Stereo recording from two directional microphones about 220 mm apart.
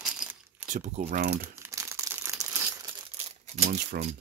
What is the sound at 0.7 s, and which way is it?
Speech, 30° right (ahead or behind).